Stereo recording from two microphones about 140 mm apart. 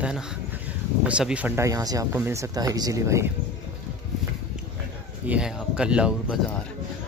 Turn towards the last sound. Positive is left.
turn(degrees=-5)  # may be behind; listen again after turning